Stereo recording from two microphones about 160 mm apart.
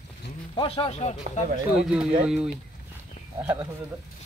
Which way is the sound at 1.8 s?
5° right (ahead or behind).